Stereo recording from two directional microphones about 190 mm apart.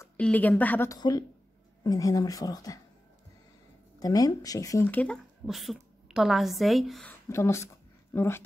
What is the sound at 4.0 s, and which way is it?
Speech, 20° left (ahead or behind).